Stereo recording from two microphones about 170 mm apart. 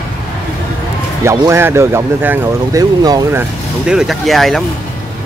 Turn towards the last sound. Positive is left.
turn(degrees=0)  # may be behind; listen again after turning